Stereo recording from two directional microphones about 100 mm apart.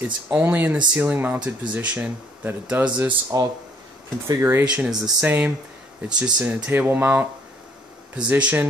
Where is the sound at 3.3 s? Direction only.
35° right (ahead or behind).